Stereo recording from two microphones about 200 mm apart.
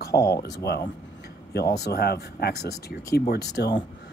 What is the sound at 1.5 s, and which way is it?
Speech, 55° left (ahead or behind).